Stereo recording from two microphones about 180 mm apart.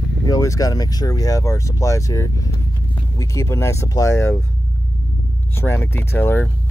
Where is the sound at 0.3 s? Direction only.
20° left (ahead or behind).